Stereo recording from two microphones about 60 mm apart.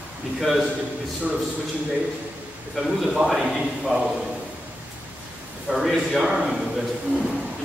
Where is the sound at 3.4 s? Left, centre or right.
Centre.